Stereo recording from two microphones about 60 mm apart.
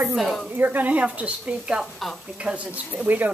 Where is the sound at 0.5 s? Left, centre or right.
Right.